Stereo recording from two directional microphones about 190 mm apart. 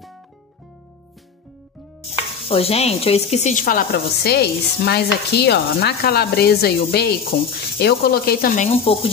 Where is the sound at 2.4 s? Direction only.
30° left (ahead or behind); by 8.7 s 50° left (ahead or behind).